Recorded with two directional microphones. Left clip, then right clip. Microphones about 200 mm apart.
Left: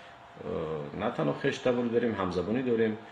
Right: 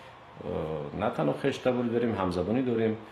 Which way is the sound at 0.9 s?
25° right (ahead or behind).